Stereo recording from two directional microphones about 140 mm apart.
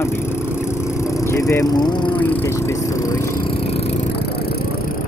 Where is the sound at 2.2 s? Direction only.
15° left (ahead or behind).